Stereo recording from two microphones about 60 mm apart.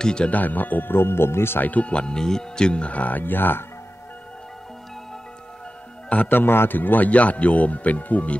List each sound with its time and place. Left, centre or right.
0.0 s speech: centre
0.3 s speech: left
1.6 s speech: left
6.0 s speech: left